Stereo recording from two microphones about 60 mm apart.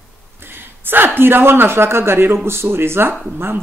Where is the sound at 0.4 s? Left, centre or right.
Right.